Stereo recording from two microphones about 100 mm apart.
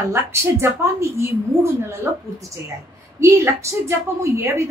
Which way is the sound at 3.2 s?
30° right (ahead or behind).